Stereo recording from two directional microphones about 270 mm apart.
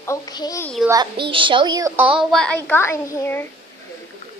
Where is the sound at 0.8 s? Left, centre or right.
Centre.